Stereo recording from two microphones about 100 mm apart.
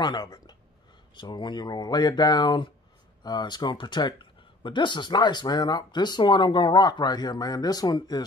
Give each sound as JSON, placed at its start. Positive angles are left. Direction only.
{"t": 0.0, "sound": "speech", "side_deg": 45}